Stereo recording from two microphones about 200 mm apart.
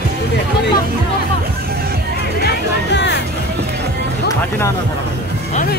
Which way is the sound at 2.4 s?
60° left (ahead or behind).